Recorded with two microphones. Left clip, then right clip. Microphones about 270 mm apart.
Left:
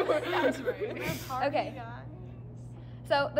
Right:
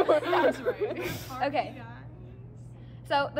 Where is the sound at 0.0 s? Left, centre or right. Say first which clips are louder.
Right 4 dB; centre.